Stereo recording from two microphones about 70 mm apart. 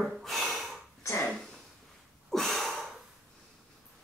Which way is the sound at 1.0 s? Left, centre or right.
Left.